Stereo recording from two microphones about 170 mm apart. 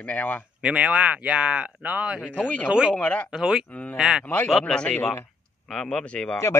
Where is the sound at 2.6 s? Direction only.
5° right (ahead or behind).